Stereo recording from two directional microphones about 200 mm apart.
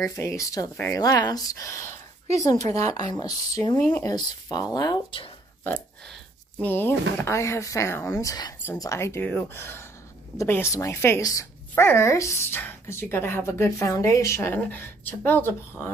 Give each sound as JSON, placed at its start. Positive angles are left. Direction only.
{"t": 0.0, "sound": "a woman's voice", "side_deg": 15}
{"t": 6.6, "sound": "a woman's voice", "side_deg": 10}